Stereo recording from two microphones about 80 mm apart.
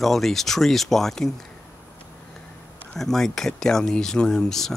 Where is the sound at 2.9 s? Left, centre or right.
Centre.